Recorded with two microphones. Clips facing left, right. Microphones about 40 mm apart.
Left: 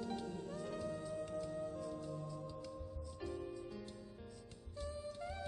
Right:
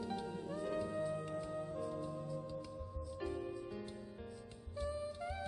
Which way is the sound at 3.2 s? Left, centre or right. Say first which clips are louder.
Right 3 dB; centre.